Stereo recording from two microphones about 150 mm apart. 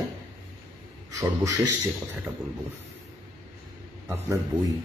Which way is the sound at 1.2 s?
20° right (ahead or behind).